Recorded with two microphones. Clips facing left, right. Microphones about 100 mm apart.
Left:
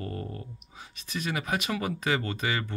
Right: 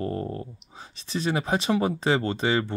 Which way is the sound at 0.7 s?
30° right (ahead or behind).